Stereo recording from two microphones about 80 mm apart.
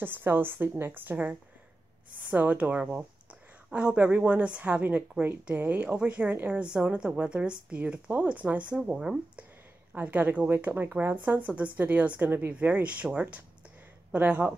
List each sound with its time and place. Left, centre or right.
0.0 s speech: right; by 9.2 s centre
9.9 s speech: right